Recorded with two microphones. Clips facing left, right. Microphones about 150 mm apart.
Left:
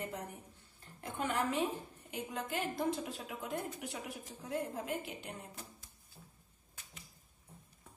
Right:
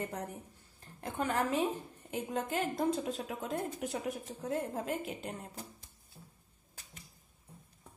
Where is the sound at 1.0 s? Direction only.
40° right (ahead or behind).